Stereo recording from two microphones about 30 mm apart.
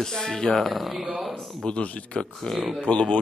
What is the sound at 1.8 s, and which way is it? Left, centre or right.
Speech, left.